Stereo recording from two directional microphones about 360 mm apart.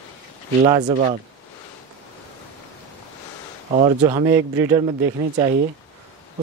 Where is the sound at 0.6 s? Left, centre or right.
Centre.